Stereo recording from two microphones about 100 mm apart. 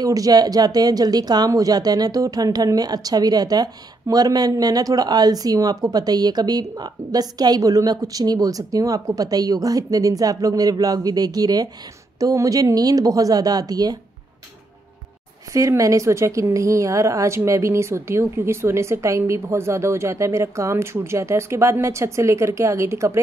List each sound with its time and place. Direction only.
0.0 s speech: 35° right (ahead or behind)
15.5 s a woman's voice: 35° right (ahead or behind)